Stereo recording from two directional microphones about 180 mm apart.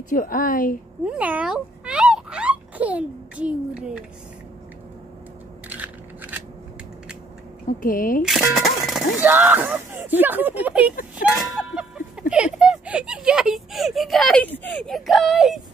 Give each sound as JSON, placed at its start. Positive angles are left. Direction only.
{"t": 0.1, "sound": "a woman's voice", "side_deg": 50}
{"t": 1.0, "sound": "a sound", "side_deg": -5}
{"t": 5.7, "sound": "biting", "side_deg": -10}
{"t": 7.8, "sound": "a woman's voice", "side_deg": 50}
{"t": 8.2, "sound": "speech", "side_deg": 0}